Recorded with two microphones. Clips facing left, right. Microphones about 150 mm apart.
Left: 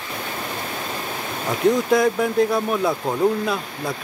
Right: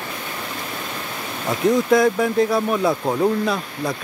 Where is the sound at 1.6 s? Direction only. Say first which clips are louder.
Right 1 dB; centre (ahead or behind).